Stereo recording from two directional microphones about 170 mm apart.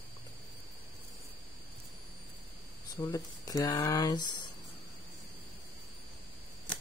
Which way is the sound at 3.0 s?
20° left (ahead or behind).